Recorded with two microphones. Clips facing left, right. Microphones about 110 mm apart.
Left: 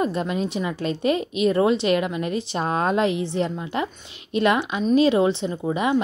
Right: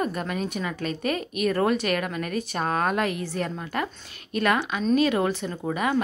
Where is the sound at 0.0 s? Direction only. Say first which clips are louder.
Left 4 dB; 25° left (ahead or behind).